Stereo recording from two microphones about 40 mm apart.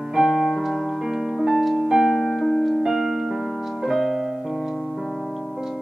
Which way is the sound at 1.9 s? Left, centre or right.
Centre.